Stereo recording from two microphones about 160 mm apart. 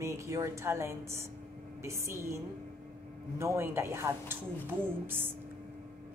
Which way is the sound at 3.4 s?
15° right (ahead or behind).